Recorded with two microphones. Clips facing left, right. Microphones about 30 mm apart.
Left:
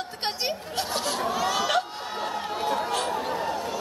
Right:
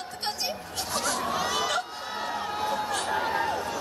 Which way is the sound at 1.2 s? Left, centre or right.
Centre.